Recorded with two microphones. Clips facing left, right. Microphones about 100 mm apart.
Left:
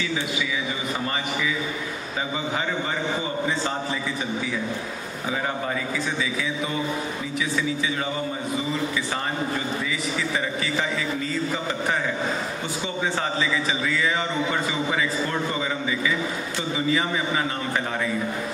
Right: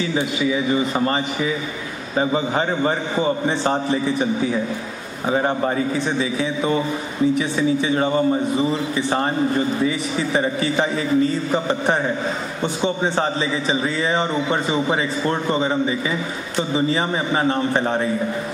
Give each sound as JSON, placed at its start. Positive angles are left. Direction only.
{"t": 0.0, "sound": "a man's voice", "side_deg": -35}
{"t": 5.3, "sound": "a man's voice", "side_deg": -40}
{"t": 9.8, "sound": "a man's voice", "side_deg": -30}
{"t": 13.7, "sound": "a man's voice", "side_deg": -30}